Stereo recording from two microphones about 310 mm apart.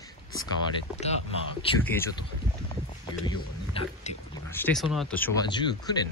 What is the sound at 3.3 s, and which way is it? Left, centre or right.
Speech, centre.